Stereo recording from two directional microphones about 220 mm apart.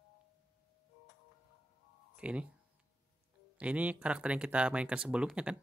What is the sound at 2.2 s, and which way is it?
Speech, 5° right (ahead or behind).